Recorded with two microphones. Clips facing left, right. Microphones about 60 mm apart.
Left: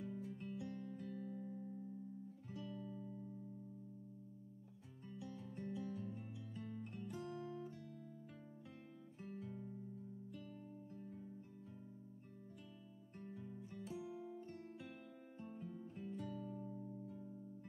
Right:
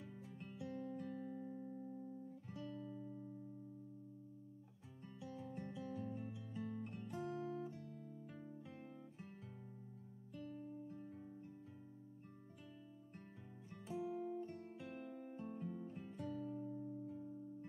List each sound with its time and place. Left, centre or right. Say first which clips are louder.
0.0 s music: left 6 dB; centre
5.2 s music: right 1 dB; centre
7.2 s music: right 3 dB; centre
9.2 s guitar: left 6 dB; centre
10.3 s music: right 4 dB; centre
13.7 s music: right 5 dB; centre